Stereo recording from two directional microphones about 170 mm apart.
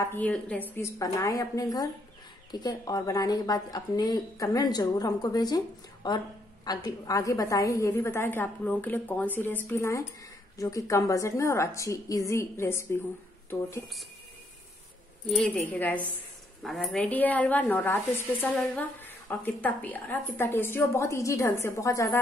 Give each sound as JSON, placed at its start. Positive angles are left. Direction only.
{"t": 0.0, "sound": "a woman's voice", "side_deg": 10}
{"t": 15.2, "sound": "a woman's voice", "side_deg": 5}
{"t": 16.6, "sound": "a woman's voice", "side_deg": 0}